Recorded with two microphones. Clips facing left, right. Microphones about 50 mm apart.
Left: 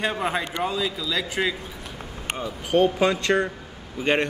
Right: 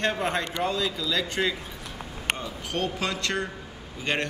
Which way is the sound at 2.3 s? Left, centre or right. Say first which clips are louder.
Left 9 dB; centre.